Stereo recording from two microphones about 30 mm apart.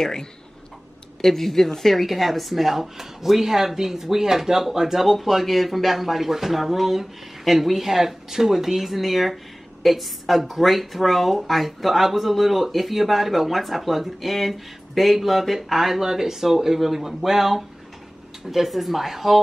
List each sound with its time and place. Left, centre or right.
0.0 s speech: left
1.2 s speech: centre
2.0 s a woman's voice: centre